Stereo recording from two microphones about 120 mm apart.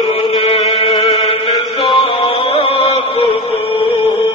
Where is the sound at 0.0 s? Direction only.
50° left (ahead or behind).